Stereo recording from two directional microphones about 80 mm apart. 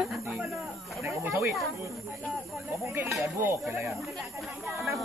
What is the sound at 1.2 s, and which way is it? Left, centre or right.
Speech, right.